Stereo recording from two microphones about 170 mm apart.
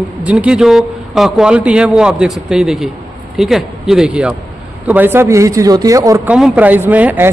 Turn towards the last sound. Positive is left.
turn(degrees=-10)  # may be behind; listen again after turning